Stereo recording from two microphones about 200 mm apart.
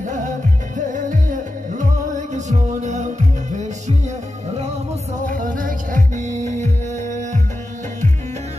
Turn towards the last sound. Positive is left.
turn(degrees=-40)  # may be behind; listen again after turning